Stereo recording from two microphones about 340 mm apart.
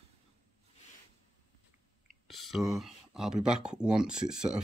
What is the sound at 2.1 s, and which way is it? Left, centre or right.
Speech, centre.